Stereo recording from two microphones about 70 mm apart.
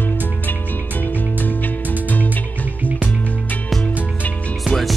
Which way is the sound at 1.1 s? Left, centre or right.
Left.